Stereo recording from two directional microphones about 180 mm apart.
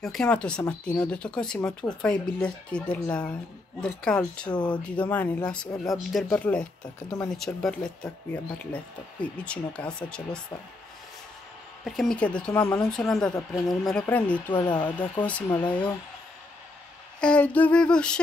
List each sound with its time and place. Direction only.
0.0 s speech: 5° left (ahead or behind)
11.8 s speech: centre (ahead or behind)
14.5 s speech: 25° left (ahead or behind)
15.2 s speech: 5° left (ahead or behind)
17.2 s speech: 5° left (ahead or behind)